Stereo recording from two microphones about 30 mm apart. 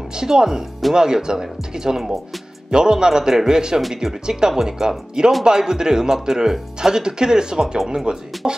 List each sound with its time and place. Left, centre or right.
0.1 s speech: right
8.4 s music: centre